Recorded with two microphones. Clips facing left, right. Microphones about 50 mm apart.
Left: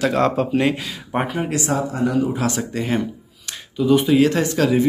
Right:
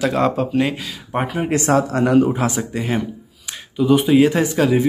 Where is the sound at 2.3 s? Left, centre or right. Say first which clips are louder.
Right 2 dB; right.